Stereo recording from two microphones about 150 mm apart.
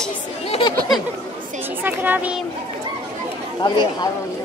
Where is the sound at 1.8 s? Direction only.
10° right (ahead or behind).